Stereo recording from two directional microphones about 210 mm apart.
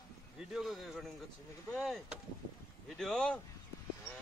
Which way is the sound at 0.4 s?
Centre (ahead or behind).